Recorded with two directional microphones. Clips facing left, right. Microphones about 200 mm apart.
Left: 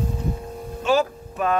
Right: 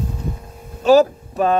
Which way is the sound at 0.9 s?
35° right (ahead or behind).